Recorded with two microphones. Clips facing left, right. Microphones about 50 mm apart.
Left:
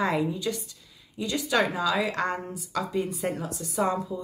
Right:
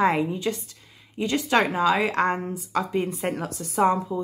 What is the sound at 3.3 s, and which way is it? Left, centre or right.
Speech, right.